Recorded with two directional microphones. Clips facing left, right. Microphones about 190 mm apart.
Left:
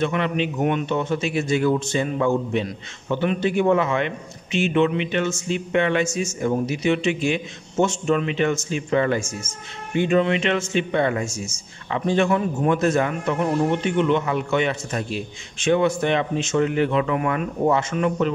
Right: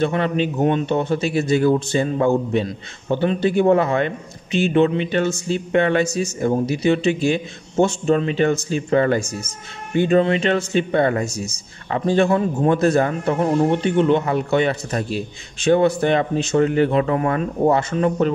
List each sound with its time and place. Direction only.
0.0 s a man's voice: 35° right (ahead or behind)